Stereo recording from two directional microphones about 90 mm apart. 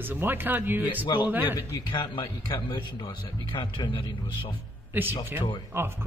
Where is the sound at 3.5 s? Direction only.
60° left (ahead or behind).